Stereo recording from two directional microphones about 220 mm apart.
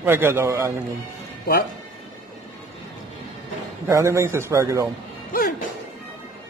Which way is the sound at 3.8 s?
15° right (ahead or behind).